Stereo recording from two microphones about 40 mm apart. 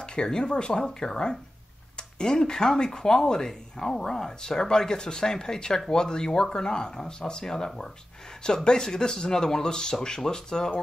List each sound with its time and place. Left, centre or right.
0.0 s speech: left